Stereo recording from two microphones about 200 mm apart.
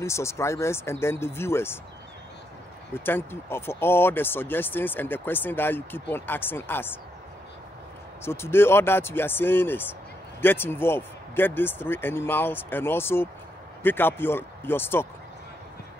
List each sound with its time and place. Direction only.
0.0 s speech: 15° left (ahead or behind)
2.9 s speech: 10° left (ahead or behind)
8.2 s speech: 10° left (ahead or behind)